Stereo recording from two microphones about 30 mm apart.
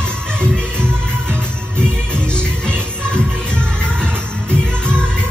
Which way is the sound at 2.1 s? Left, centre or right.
Left.